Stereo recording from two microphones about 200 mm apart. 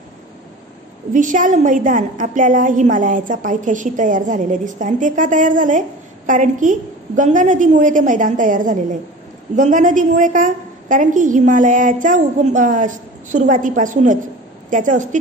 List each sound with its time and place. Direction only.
1.1 s a woman's voice: 40° right (ahead or behind)